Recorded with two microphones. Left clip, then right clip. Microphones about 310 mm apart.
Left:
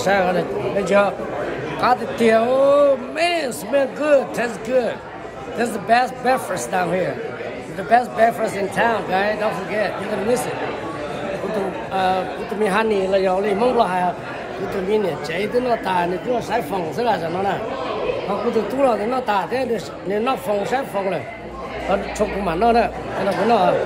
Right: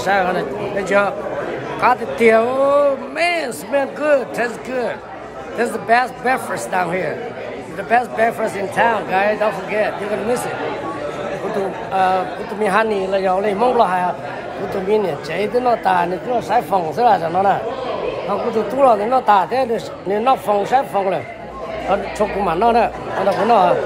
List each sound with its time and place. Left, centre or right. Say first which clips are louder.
0.0 s a man's voice: right 1 dB; centre
11.9 s speech: right 4 dB; centre
22.4 s speech: right 2 dB; centre